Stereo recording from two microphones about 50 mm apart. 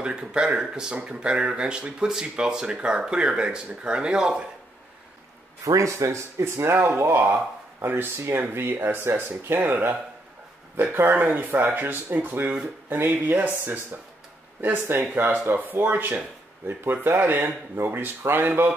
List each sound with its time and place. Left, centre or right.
0.0 s speech: centre
5.8 s speech: right
11.1 s speech: right